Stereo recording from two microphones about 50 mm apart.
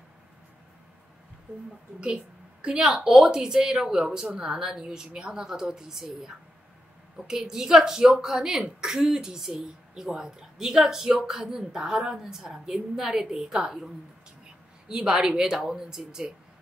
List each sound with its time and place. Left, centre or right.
2.6 s a woman's voice: centre
14.9 s a woman's voice: centre